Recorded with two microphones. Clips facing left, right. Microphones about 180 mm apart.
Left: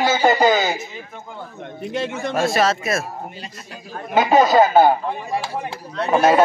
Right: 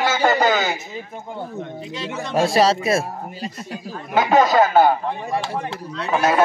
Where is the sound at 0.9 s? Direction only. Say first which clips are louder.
Right 4 dB; 25° right (ahead or behind).